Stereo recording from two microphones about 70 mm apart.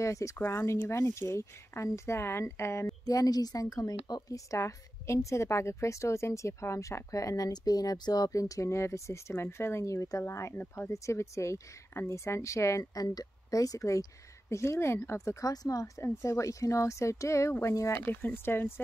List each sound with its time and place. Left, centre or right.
0.0 s a woman's voice: left
3.1 s a woman's voice: left
10.5 s speech: left
10.9 s a woman's voice: left
13.0 s a woman's voice: left
15.5 s speech: left
16.0 s a woman's voice: left
18.3 s speech: left